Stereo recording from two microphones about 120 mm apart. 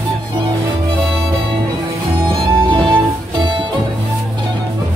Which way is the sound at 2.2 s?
40° right (ahead or behind).